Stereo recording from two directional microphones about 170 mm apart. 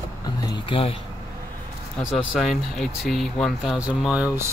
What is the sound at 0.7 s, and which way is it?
Speech, 35° left (ahead or behind).